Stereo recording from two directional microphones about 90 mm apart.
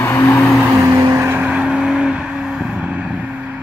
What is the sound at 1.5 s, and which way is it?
Vehicle, 10° right (ahead or behind).